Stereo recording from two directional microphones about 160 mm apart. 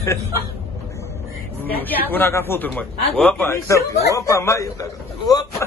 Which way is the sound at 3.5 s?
20° left (ahead or behind).